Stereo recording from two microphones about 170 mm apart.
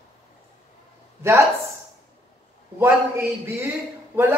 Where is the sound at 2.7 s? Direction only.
15° right (ahead or behind).